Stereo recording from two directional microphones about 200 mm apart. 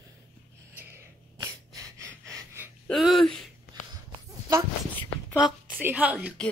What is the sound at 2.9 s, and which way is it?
Speech, centre (ahead or behind).